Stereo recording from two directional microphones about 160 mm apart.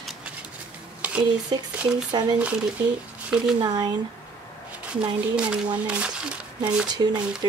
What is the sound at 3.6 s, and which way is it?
Speech, 25° right (ahead or behind).